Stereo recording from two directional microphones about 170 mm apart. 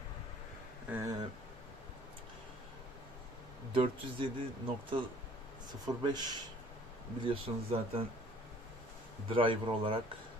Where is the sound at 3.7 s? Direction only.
30° right (ahead or behind).